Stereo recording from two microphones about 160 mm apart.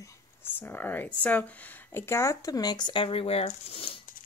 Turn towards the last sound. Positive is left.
turn(degrees=35)  # may be behind; listen again after turning